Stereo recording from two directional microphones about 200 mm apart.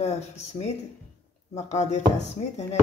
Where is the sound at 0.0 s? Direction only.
35° left (ahead or behind).